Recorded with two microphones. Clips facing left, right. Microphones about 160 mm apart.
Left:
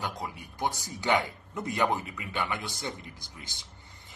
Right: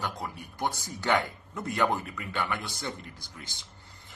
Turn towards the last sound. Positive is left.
turn(degrees=20)  # may be behind; listen again after turning